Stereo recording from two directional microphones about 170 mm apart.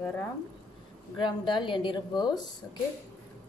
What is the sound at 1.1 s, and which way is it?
Speech, 25° left (ahead or behind).